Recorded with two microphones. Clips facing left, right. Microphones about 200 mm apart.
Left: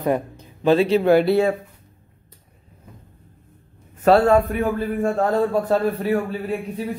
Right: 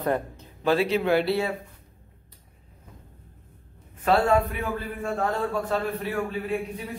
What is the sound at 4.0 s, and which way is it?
A man's voice, 50° left (ahead or behind).